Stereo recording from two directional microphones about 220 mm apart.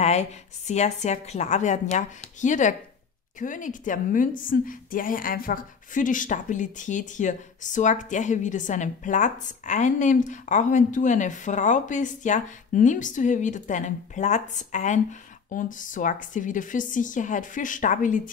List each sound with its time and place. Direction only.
0.0 s a woman's voice: 30° left (ahead or behind)